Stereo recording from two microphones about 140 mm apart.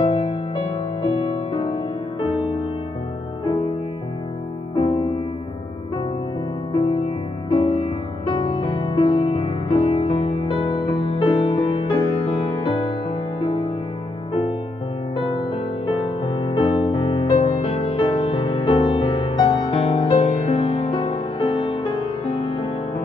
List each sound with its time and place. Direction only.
0.0 s music: 40° left (ahead or behind)
4.7 s music: 45° left (ahead or behind)
7.5 s music: 40° left (ahead or behind)
15.3 s music: 35° left (ahead or behind)
17.3 s music: 50° left (ahead or behind); by 19.7 s 25° left (ahead or behind)
19.7 s music: 45° left (ahead or behind)